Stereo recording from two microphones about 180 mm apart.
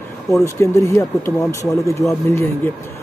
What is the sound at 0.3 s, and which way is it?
Speech, 15° left (ahead or behind).